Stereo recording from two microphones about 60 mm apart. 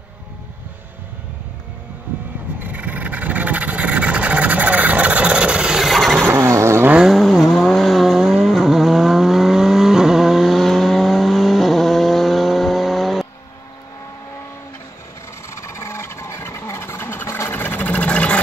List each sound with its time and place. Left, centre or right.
2.6 s vehicle: right
5.8 s vehicle: centre
6.3 s vehicle: right
7.0 s vehicle: centre
15.5 s vehicle: left
17.5 s sewing machine: left